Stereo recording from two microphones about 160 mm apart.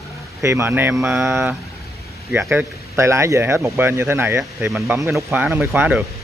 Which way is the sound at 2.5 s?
15° right (ahead or behind).